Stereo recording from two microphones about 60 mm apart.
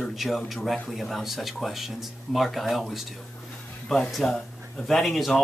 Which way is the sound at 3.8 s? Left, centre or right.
Centre.